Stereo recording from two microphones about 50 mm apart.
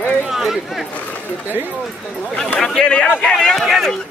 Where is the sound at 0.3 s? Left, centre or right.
Centre.